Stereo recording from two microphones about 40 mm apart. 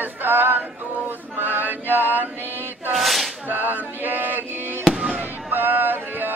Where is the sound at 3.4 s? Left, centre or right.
Right.